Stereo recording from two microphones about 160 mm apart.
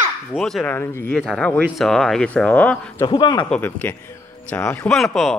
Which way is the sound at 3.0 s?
30° left (ahead or behind).